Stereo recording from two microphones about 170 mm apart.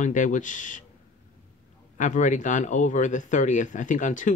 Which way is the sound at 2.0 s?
45° left (ahead or behind).